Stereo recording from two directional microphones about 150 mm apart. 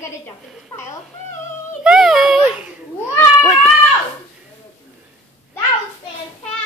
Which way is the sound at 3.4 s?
5° right (ahead or behind).